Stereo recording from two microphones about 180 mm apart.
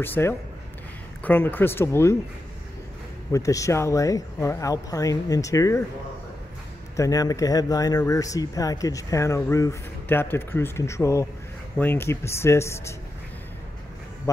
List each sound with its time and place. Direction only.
0.0 s speech: 10° left (ahead or behind)
3.3 s speech: 15° left (ahead or behind)
7.0 s speech: 20° left (ahead or behind)